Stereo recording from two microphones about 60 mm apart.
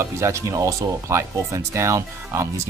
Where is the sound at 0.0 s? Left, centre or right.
Right.